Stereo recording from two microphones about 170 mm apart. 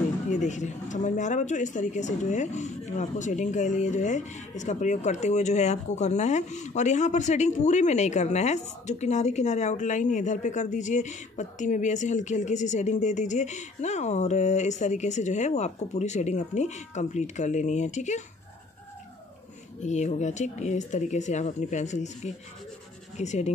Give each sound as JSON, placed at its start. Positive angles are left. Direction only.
{"t": 0.3, "sound": "speech", "side_deg": 45}
{"t": 19.8, "sound": "speech", "side_deg": 45}